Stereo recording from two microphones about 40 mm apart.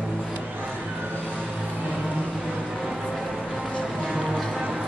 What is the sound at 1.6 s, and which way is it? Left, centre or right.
Music, right.